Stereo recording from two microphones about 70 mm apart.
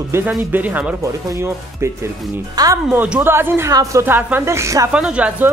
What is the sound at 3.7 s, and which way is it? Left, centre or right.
Speech, right.